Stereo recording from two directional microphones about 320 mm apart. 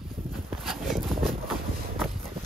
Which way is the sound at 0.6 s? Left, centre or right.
Centre.